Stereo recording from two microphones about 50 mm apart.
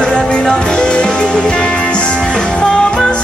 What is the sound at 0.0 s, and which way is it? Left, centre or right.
Music, centre.